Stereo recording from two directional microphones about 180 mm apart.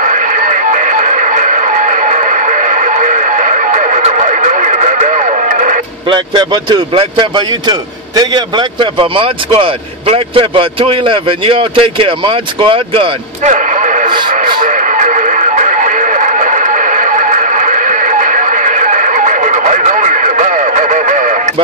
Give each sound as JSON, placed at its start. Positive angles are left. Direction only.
{"t": 0.0, "sound": "radio", "side_deg": -45}
{"t": 6.0, "sound": "a man's voice", "side_deg": -25}
{"t": 13.5, "sound": "radio", "side_deg": -45}